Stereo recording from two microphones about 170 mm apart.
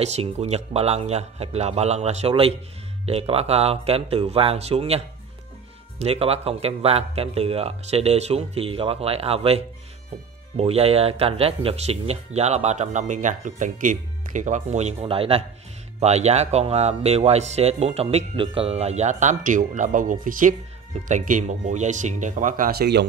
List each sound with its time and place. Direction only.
0.0 s speech: 40° right (ahead or behind)
10.6 s speech: 35° right (ahead or behind); by 23.0 s 75° right (ahead or behind)